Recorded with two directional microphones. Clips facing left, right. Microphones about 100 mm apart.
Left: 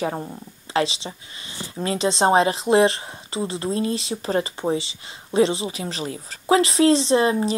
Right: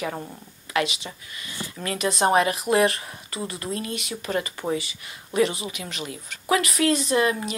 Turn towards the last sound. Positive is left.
turn(degrees=30)  # may be behind; listen again after turning